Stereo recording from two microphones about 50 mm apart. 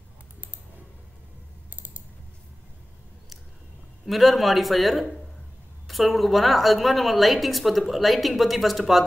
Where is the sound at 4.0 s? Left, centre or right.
Centre.